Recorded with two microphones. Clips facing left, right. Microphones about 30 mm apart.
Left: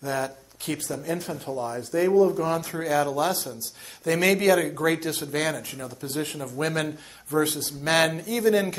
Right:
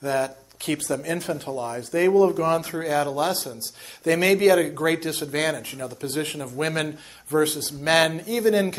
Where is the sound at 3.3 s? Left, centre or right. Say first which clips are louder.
Right 2 dB; right.